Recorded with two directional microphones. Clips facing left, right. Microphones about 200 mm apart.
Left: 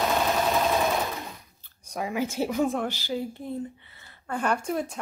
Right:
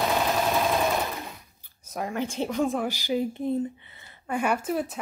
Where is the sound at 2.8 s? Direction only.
15° right (ahead or behind).